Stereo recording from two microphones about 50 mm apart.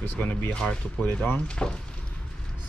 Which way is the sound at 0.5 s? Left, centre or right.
Left.